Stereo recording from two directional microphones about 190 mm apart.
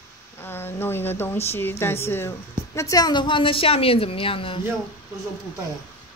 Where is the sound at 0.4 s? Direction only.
10° left (ahead or behind).